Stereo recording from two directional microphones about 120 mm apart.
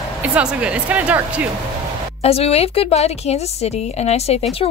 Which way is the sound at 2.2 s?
60° left (ahead or behind).